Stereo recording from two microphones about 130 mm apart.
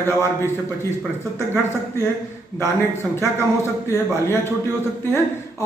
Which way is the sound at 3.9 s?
20° left (ahead or behind).